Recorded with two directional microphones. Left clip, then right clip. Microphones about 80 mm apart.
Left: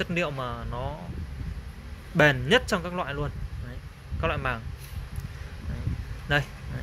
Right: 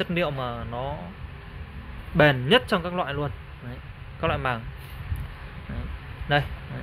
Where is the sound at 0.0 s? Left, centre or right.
Centre.